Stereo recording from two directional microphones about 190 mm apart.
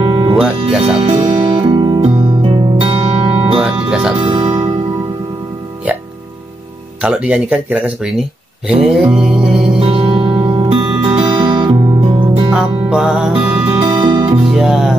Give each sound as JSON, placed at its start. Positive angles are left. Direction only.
{"t": 0.0, "sound": "music", "side_deg": -30}
{"t": 3.5, "sound": "music", "side_deg": -5}
{"t": 4.2, "sound": "music", "side_deg": -30}
{"t": 7.0, "sound": "speech", "side_deg": -5}
{"t": 8.6, "sound": "music", "side_deg": -5}
{"t": 9.8, "sound": "music", "side_deg": -30}
{"t": 12.4, "sound": "music", "side_deg": 0}
{"t": 13.8, "sound": "music", "side_deg": -20}
{"t": 14.5, "sound": "music", "side_deg": 0}